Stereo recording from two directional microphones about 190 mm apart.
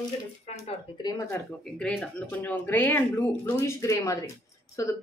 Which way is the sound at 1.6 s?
5° left (ahead or behind).